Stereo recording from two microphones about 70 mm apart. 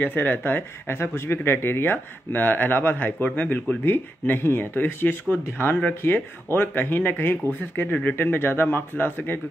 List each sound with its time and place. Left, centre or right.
0.0 s speech: left